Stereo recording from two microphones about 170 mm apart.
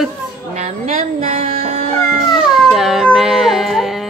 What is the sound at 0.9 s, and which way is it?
Music, 40° right (ahead or behind).